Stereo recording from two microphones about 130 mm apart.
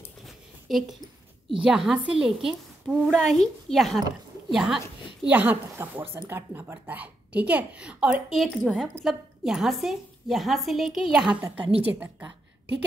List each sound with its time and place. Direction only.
0.7 s a woman's voice: centre (ahead or behind)
4.5 s a sound: centre (ahead or behind)
5.3 s a woman's voice: 15° right (ahead or behind)